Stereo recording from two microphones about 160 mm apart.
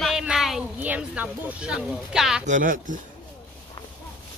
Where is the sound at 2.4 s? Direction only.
55° right (ahead or behind).